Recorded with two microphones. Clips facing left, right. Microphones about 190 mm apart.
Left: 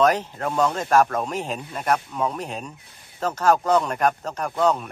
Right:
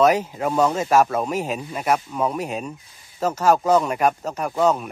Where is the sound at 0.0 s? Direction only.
10° right (ahead or behind).